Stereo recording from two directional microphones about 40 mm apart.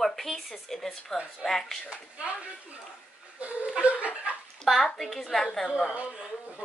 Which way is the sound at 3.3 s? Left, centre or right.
Right.